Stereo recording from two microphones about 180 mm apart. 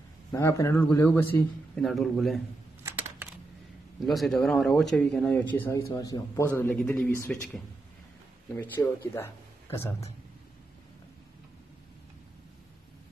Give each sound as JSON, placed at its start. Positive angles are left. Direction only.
{"t": 0.3, "sound": "a man's voice", "side_deg": 15}
{"t": 1.9, "sound": "speech", "side_deg": 0}
{"t": 2.8, "sound": "computer keyboard", "side_deg": -10}
{"t": 4.0, "sound": "a man's voice", "side_deg": 0}